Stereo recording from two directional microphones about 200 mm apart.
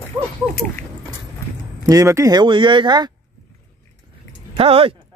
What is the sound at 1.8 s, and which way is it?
Speech, 15° right (ahead or behind).